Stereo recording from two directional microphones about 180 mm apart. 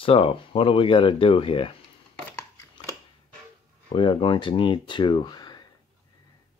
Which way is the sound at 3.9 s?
30° left (ahead or behind).